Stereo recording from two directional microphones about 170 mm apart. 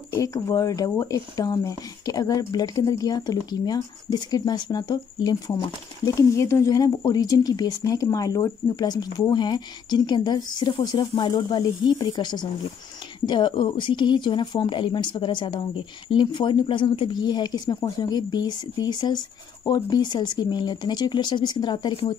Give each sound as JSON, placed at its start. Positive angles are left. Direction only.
{"t": 0.2, "sound": "speech", "side_deg": 20}